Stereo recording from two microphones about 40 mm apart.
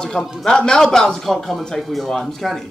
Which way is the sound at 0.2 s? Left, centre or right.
Left.